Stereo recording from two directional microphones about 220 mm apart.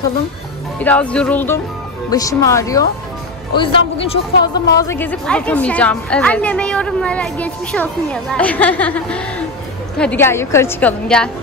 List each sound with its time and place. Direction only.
0.7 s a woman's voice: 5° left (ahead or behind); by 4.2 s 25° left (ahead or behind)
4.7 s a woman's voice: 10° left (ahead or behind)